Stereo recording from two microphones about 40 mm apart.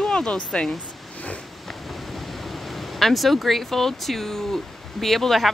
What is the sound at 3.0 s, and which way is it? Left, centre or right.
Speech, centre.